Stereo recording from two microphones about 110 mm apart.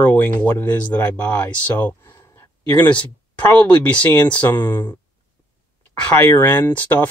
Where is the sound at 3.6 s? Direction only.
10° left (ahead or behind).